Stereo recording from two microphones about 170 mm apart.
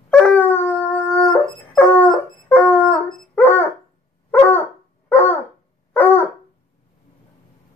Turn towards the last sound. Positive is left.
turn(degrees=10)  # may be behind; listen again after turning